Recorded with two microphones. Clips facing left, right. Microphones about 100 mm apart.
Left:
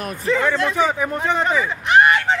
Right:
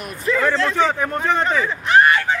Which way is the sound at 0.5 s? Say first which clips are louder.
Right 1 dB; 10° left (ahead or behind).